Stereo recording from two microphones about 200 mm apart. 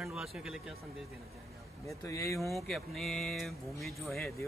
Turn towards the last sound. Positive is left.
turn(degrees=0)  # may be behind; listen again after turning